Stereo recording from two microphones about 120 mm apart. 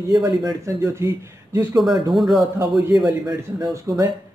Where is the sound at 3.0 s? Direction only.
35° right (ahead or behind).